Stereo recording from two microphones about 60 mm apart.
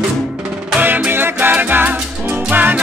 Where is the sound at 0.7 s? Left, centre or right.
Right.